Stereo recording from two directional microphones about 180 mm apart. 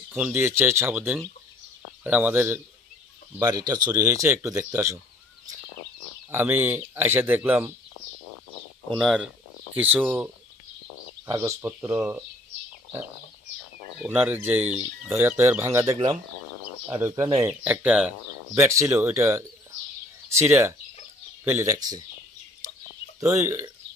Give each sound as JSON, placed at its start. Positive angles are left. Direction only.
{"t": 0.1, "sound": "speech", "side_deg": -10}
{"t": 6.3, "sound": "speech", "side_deg": -10}
{"t": 8.9, "sound": "speech", "side_deg": 0}
{"t": 14.0, "sound": "speech", "side_deg": -10}
{"t": 21.5, "sound": "speech", "side_deg": -15}
{"t": 23.2, "sound": "speech", "side_deg": -15}